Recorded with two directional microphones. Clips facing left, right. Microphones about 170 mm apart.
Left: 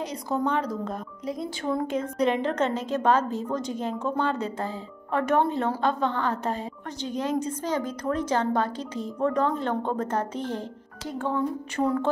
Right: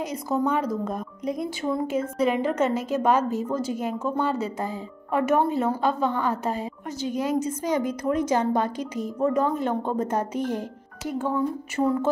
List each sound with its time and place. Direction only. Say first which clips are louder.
0.3 s a woman's voice: right 2 dB; 5° right (ahead or behind)
1.6 s a woman's voice: even; 5° right (ahead or behind)